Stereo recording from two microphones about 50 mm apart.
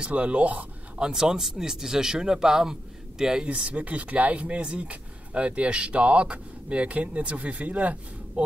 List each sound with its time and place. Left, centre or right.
0.0 s speech: right
0.9 s speech: centre
3.4 s speech: right